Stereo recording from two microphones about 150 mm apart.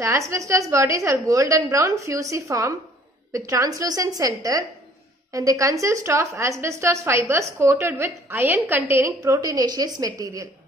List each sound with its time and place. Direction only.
0.0 s a woman's voice: 20° right (ahead or behind)